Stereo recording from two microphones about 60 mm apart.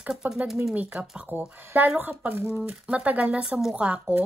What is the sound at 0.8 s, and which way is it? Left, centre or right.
Speech, right.